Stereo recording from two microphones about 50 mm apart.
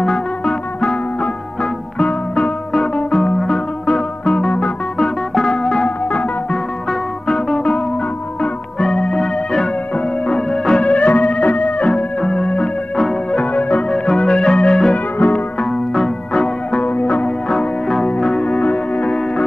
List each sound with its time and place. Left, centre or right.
0.0 s music: centre
2.7 s music: centre
10.5 s organ: centre
10.9 s music: left
11.9 s organ: centre
13.3 s music: left
13.8 s music: centre
15.1 s music: left
15.9 s organ: centre
17.0 s music: left
17.5 s music: centre
18.4 s music: left